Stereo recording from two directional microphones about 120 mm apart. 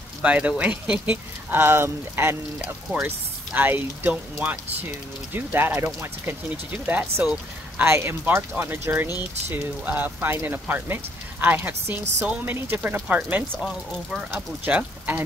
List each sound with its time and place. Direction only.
0.2 s speech: 10° right (ahead or behind)
2.6 s speech: 10° right (ahead or behind)
6.9 s speech: 15° right (ahead or behind)